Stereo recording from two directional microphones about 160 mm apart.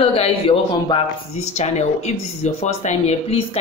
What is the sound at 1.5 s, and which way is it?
A woman's voice, 45° left (ahead or behind).